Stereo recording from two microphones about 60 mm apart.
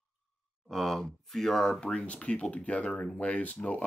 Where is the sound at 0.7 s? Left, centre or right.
Centre.